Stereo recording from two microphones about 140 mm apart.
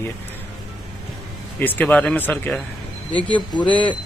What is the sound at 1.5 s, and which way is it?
Speech, 15° left (ahead or behind).